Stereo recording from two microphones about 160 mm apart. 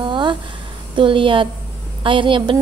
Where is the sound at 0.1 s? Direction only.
30° right (ahead or behind).